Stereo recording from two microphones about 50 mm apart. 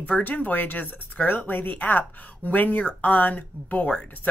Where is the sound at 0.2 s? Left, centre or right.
Left.